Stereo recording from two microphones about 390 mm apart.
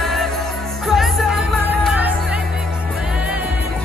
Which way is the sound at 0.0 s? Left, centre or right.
Centre.